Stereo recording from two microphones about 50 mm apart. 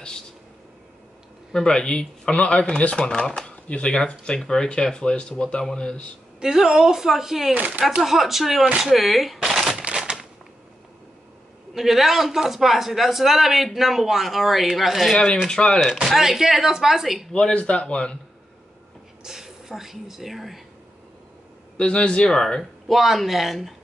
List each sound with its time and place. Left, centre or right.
1.5 s speech: centre
6.4 s a woman's voice: centre
7.5 s speech: right
8.0 s a man's voice: centre
9.4 s shuffling cards: centre
10.1 s a sound: right
11.7 s a man's voice: centre
15.4 s speech: centre
16.2 s a woman's voice: centre
17.3 s speech: centre
19.2 s a sound: centre
19.7 s a man's voice: centre
21.7 s speech: centre
22.8 s a man's voice: centre